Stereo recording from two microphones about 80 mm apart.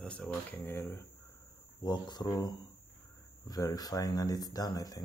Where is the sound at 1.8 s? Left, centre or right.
Left.